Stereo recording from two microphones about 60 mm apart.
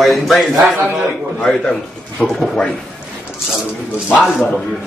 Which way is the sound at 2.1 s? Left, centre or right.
Centre.